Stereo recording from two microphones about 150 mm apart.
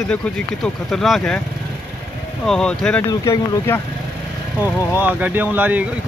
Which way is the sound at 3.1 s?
20° left (ahead or behind).